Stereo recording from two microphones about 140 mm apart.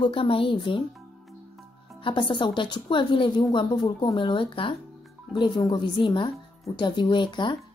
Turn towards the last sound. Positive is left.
turn(degrees=35)  # may be behind; listen again after turning